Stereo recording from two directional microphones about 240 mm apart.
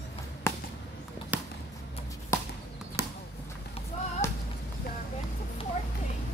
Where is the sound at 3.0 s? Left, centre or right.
Centre.